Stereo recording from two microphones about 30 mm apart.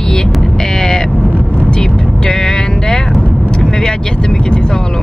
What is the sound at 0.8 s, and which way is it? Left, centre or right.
Speech, centre.